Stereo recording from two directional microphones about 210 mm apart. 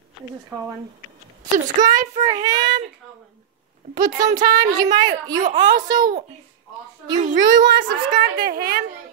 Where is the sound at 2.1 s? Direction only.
25° right (ahead or behind).